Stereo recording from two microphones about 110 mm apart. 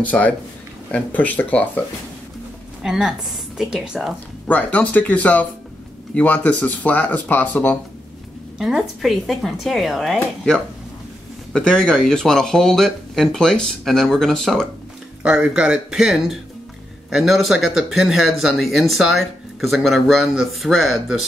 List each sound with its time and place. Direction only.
0.0 s speech: 15° left (ahead or behind)
2.8 s speech: 5° right (ahead or behind)
4.5 s speech: 15° left (ahead or behind)
8.5 s speech: 5° right (ahead or behind)
15.2 s speech: 5° right (ahead or behind)